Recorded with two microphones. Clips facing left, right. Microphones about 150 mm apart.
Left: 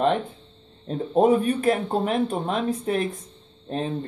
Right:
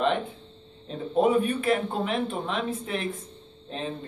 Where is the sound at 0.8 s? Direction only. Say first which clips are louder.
Left 4 dB; 40° left (ahead or behind).